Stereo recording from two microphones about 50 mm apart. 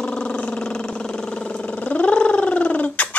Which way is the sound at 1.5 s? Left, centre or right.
Left.